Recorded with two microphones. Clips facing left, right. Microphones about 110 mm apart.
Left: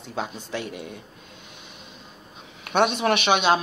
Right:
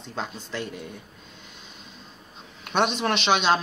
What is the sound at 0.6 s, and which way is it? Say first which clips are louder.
Speech: left 2 dB; 65° left (ahead or behind).